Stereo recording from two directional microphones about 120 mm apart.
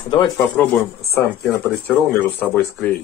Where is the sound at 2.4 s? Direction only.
15° left (ahead or behind).